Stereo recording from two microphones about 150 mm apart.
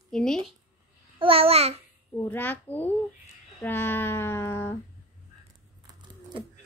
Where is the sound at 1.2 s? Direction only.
40° right (ahead or behind).